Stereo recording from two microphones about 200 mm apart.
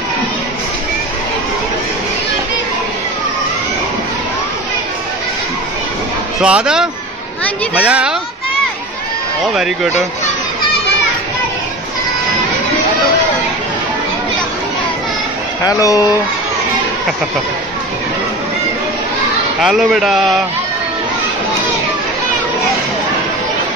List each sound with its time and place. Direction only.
6.4 s a man's voice: 5° right (ahead or behind)
15.6 s speech: 15° left (ahead or behind)
19.6 s a man's voice: centre (ahead or behind)